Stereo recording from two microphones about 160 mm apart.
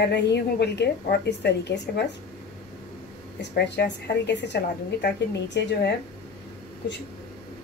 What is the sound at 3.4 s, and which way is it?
A woman's voice, 90° left.